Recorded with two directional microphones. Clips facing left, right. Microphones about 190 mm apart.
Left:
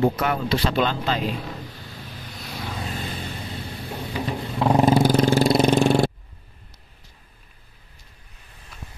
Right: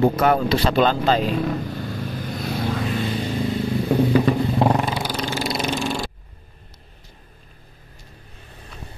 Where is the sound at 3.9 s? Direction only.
65° right (ahead or behind).